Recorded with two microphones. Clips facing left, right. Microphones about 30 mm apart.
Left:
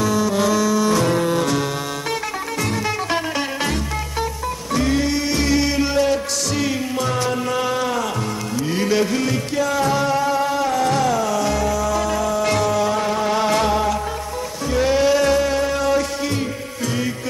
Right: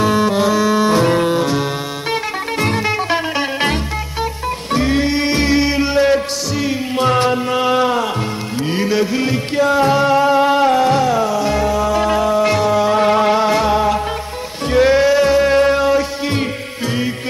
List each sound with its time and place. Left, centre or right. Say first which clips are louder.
0.0 s music: right 4 dB; right
0.4 s music: right 3 dB; right
2.6 s music: right 5 dB; right
4.7 s music: right 3 dB; right
7.4 s a sound: right 6 dB; right
8.7 s music: right 2 dB; centre
9.2 s music: right 4 dB; right
10.9 s music: right 4 dB; centre
12.4 s music: right 4 dB; centre
13.0 s music: right 8 dB; right
13.3 s music: right 4 dB; centre
14.7 s music: right 5 dB; right
15.4 s music: right 7 dB; right